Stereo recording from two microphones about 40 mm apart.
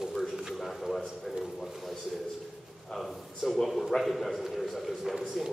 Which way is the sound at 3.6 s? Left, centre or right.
Centre.